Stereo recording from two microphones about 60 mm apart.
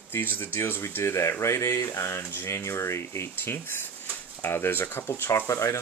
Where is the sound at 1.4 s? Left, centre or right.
Left.